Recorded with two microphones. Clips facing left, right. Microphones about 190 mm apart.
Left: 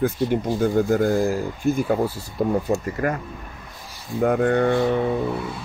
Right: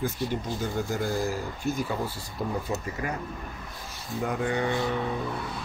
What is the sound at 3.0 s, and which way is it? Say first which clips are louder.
Speech: left 10 dB; 55° left (ahead or behind).